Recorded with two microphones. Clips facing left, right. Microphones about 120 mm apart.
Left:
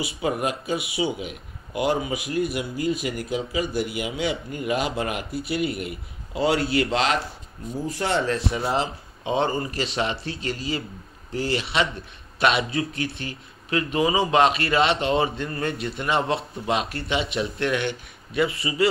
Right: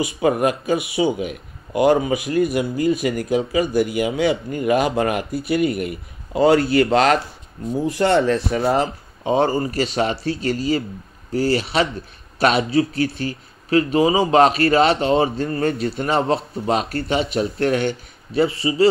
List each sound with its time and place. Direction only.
0.0 s speech: 50° right (ahead or behind)
7.8 s a man's voice: 65° right (ahead or behind); by 18.9 s 30° right (ahead or behind)